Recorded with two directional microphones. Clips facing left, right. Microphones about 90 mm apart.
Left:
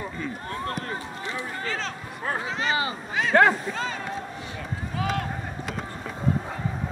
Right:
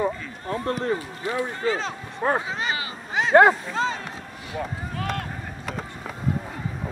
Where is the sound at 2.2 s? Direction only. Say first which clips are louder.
Right 4 dB; 30° right (ahead or behind).